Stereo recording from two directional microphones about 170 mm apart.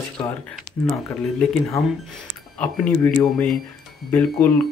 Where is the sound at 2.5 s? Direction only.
5° left (ahead or behind).